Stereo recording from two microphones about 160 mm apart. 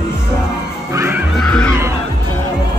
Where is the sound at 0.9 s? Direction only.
15° right (ahead or behind).